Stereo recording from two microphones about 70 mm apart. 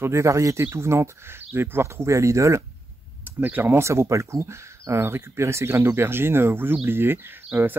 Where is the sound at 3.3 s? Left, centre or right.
Right.